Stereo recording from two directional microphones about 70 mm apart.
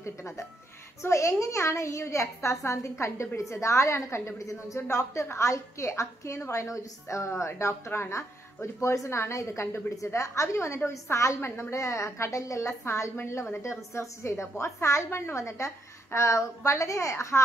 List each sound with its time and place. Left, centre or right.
0.0 s a woman's voice: left